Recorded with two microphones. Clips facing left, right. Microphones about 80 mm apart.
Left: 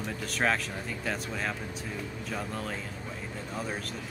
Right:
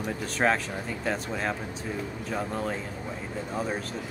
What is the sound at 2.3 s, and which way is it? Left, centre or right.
Speech, centre.